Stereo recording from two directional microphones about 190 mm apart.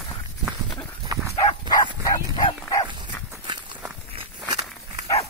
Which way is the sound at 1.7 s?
20° left (ahead or behind).